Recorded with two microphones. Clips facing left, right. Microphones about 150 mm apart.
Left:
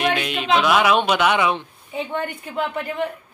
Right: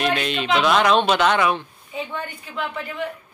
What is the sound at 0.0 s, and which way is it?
Speech, 10° left (ahead or behind).